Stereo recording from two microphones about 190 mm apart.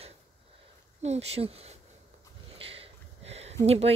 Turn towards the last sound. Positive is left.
turn(degrees=-35)  # may be behind; listen again after turning